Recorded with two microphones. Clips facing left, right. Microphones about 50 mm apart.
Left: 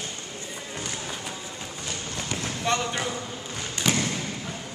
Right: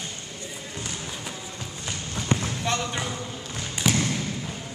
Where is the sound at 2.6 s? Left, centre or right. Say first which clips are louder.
Left 1 dB; centre.